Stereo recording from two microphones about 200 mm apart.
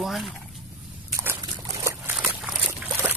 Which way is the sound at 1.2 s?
15° right (ahead or behind).